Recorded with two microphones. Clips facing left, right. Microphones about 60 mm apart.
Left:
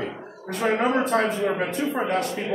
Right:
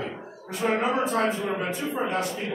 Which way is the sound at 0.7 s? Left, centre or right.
Left.